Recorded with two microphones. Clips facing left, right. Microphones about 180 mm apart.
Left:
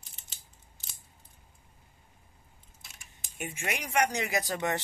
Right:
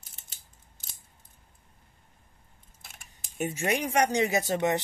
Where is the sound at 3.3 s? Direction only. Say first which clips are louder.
Right 8 dB; 35° right (ahead or behind); by 4.8 s 20° right (ahead or behind).